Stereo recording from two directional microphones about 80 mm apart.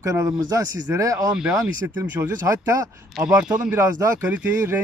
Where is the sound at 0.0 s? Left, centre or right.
Right.